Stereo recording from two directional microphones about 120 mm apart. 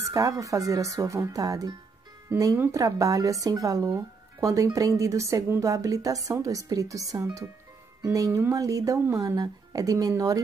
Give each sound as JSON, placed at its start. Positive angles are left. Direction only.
{"t": 0.1, "sound": "speech", "side_deg": -30}